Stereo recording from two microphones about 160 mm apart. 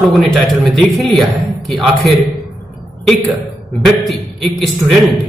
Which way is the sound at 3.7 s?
Centre (ahead or behind).